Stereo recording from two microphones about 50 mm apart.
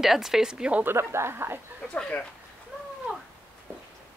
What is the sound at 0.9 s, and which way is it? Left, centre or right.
Speech, right.